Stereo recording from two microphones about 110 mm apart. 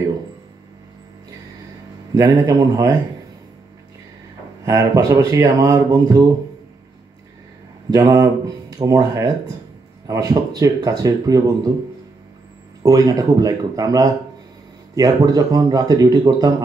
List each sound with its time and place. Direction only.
2.3 s speech: 35° right (ahead or behind)
4.6 s speech: 30° right (ahead or behind)
7.9 s speech: 30° right (ahead or behind)
12.8 s speech: 30° right (ahead or behind)